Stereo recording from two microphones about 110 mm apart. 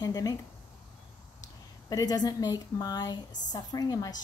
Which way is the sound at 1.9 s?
35° left (ahead or behind).